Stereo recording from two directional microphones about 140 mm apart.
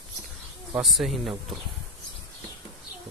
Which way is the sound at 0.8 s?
Centre (ahead or behind).